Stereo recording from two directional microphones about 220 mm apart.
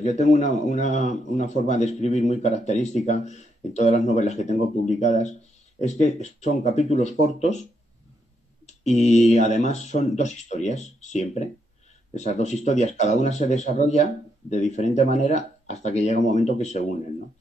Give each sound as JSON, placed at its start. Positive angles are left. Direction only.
{"t": 0.2, "sound": "speech", "side_deg": 35}
{"t": 8.6, "sound": "speech", "side_deg": 30}